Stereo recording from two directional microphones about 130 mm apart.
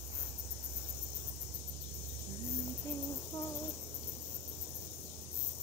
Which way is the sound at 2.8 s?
25° left (ahead or behind).